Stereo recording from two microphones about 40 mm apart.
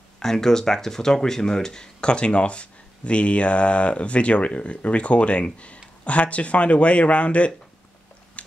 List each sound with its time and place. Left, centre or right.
0.2 s speech: centre; by 7.5 s left
8.4 s dog: left